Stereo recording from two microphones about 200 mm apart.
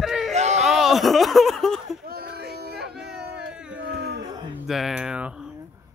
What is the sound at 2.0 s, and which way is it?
Music, 50° right (ahead or behind).